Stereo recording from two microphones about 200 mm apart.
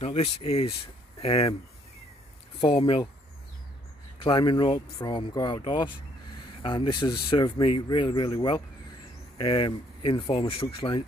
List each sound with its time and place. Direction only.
0.0 s speech: 30° left (ahead or behind)
2.6 s speech: 25° left (ahead or behind)
4.2 s speech: 25° left (ahead or behind)